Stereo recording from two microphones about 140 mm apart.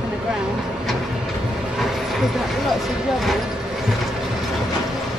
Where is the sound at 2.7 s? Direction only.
Centre (ahead or behind).